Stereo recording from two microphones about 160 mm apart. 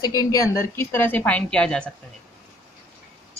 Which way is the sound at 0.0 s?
25° left (ahead or behind).